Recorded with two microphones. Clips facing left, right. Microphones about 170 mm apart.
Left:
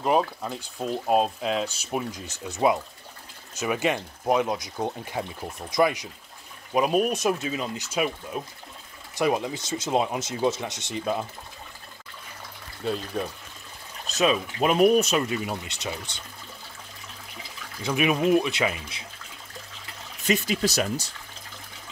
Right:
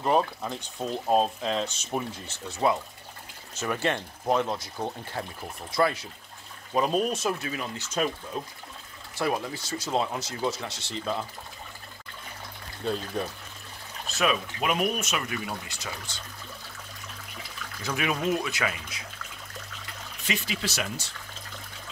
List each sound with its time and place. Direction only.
0.0 s speech: 5° left (ahead or behind)
3.5 s speech: 10° left (ahead or behind)
13.2 s speech: 5° left (ahead or behind)
14.0 s speech: 20° left (ahead or behind)
17.8 s speech: 20° left (ahead or behind)
20.2 s speech: 45° left (ahead or behind)